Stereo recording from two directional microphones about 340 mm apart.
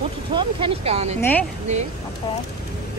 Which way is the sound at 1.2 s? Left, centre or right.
Centre.